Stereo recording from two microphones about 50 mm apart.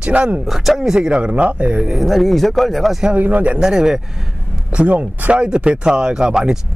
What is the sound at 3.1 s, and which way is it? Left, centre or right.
Speech, right.